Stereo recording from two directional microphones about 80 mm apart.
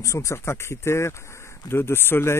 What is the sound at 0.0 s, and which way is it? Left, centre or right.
Speech, left.